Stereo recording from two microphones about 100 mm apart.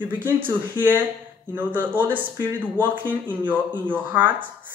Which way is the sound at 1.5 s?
20° right (ahead or behind).